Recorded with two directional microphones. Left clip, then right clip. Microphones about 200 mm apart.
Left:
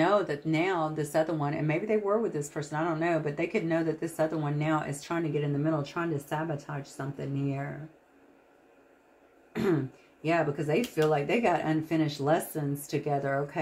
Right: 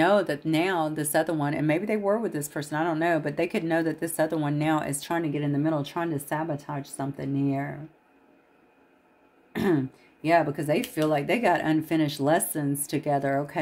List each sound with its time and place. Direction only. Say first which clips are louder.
0.0 s speech: right 4 dB; 50° right (ahead or behind)
9.5 s throat clearing: right 3 dB; 60° right (ahead or behind)
10.2 s speech: right 5 dB; 55° right (ahead or behind)